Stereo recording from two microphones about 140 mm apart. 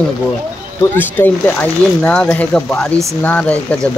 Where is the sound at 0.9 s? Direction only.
15° left (ahead or behind).